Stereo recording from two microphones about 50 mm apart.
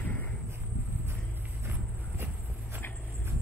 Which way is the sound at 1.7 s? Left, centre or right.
Right.